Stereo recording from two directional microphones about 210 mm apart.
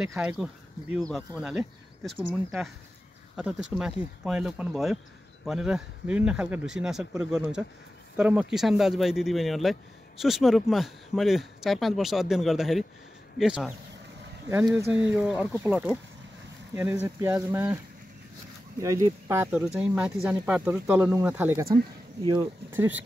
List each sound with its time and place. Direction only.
0.0 s speech: 5° right (ahead or behind)
18.8 s speech: 15° right (ahead or behind)
22.2 s speech: 20° right (ahead or behind)
22.7 s speech: 10° right (ahead or behind)